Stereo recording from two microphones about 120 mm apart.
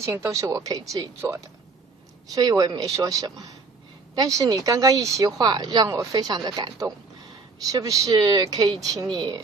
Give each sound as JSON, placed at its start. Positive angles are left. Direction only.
{"t": 0.0, "sound": "a woman's voice", "side_deg": -25}